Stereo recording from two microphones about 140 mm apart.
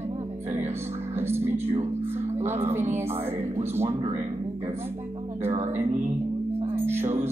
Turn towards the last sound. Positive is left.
turn(degrees=-15)  # may be behind; listen again after turning